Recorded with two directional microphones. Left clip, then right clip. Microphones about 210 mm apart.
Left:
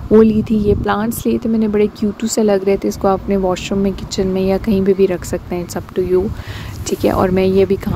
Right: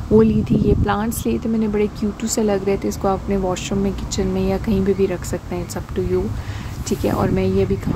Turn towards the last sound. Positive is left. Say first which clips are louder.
# left 6 dB
turn(degrees=35)  # may be behind; listen again after turning